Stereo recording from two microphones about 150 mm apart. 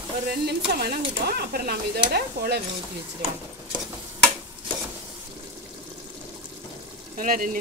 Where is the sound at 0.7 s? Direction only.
90° right.